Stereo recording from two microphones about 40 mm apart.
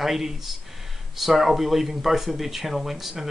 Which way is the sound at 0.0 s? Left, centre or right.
Centre.